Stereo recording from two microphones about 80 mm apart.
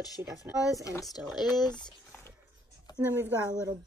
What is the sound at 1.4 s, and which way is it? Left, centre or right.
Speech, left.